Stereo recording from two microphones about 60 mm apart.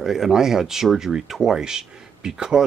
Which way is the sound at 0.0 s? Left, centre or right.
Centre.